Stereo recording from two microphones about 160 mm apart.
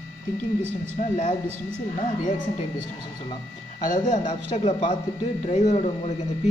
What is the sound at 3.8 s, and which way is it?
Speech, 55° left (ahead or behind).